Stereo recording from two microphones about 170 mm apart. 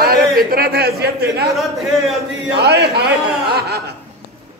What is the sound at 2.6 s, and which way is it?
Speech, 75° right (ahead or behind).